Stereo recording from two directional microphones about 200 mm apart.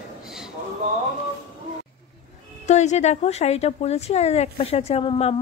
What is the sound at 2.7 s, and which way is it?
A woman's voice, 35° left (ahead or behind).